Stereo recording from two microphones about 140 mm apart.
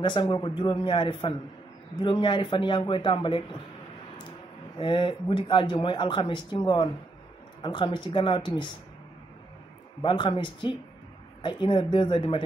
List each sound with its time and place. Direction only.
0.0 s speech: 35° left (ahead or behind)
4.7 s speech: 35° left (ahead or behind)
10.0 s speech: 35° left (ahead or behind)